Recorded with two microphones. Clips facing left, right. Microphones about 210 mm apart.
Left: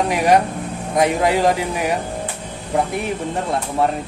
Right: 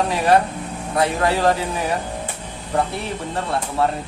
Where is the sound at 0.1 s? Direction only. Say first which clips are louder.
Left 2 dB; 15° left (ahead or behind).